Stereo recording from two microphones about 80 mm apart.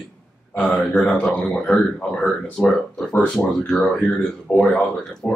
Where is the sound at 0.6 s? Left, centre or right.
Centre.